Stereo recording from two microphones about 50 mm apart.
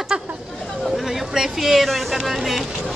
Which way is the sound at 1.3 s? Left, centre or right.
Centre.